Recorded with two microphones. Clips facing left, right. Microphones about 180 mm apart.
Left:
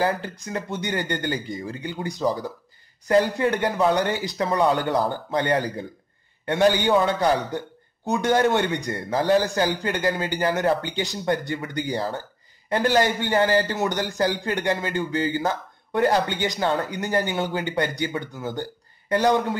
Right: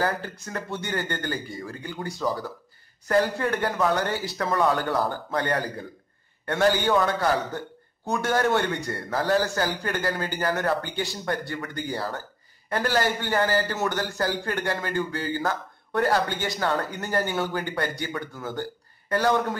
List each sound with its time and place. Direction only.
0.0 s a man's voice: 20° left (ahead or behind)